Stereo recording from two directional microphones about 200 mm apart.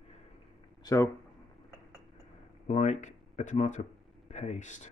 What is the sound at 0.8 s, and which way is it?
Speech, 15° left (ahead or behind).